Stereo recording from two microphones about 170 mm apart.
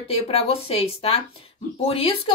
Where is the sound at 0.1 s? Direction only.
35° left (ahead or behind).